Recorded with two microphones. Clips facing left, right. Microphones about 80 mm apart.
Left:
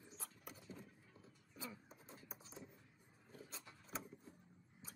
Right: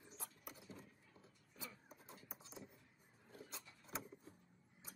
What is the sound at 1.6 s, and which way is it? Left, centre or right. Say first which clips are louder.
Vehicle: left 3 dB; left.